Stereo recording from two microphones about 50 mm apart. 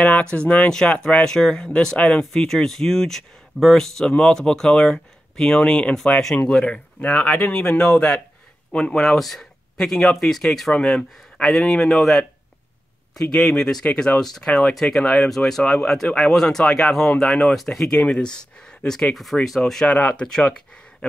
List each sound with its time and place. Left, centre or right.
0.0 s speech: left
8.9 s speech: centre
10.7 s speech: centre
11.4 s speech: centre
19.3 s speech: centre
19.9 s speech: left